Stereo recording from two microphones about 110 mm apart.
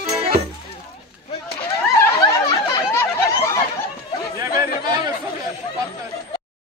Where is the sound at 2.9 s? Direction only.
20° left (ahead or behind).